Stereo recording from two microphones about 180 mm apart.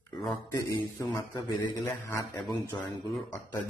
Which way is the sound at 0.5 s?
25° left (ahead or behind).